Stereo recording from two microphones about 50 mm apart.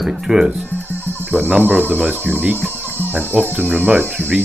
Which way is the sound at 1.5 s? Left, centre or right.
Right.